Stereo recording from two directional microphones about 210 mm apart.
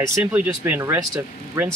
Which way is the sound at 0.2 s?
5° right (ahead or behind).